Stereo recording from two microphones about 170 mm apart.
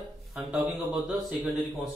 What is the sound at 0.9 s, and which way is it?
Speech, 5° right (ahead or behind).